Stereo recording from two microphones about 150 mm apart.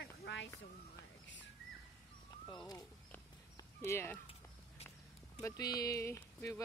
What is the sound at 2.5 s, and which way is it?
Speech, 25° left (ahead or behind).